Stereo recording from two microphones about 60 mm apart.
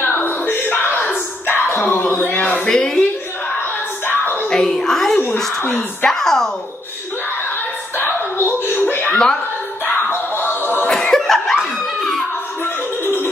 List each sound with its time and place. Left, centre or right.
0.0 s a sound: left
2.7 s a woman's voice: centre
4.1 s music: left
4.5 s a sound: centre
5.6 s speech: left
6.0 s speech: centre
8.0 s chuckle: left
9.9 s music: left
10.9 s chuckle: centre